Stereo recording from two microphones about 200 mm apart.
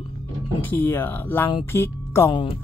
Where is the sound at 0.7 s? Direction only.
10° left (ahead or behind).